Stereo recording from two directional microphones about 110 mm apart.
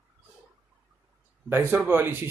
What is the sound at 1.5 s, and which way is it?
Speech, 20° right (ahead or behind).